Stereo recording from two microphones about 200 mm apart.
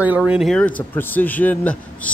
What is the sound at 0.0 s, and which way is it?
Speech, 5° right (ahead or behind).